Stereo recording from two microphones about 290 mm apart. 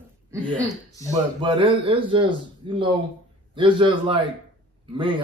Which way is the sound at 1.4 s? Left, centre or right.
Centre.